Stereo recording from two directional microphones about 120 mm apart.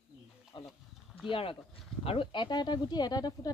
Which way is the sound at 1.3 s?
50° left (ahead or behind).